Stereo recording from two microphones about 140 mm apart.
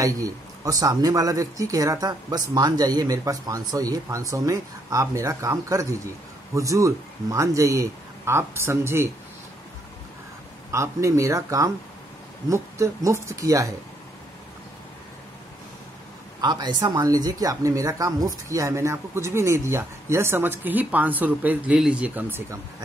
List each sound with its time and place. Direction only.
0.0 s speech: 25° right (ahead or behind)
10.7 s speech: 20° right (ahead or behind)
16.3 s speech: 30° right (ahead or behind); by 22.6 s 15° right (ahead or behind)